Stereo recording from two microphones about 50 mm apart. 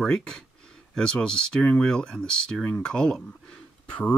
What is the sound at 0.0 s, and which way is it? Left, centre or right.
Speech, centre.